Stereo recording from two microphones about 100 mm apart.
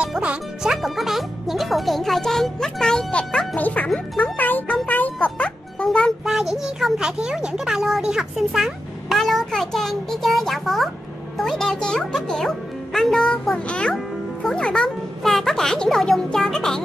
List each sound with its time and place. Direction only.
0.0 s speech: 10° right (ahead or behind); by 4.7 s 15° left (ahead or behind)
4.8 s music: 15° left (ahead or behind)
6.2 s speech: 5° right (ahead or behind)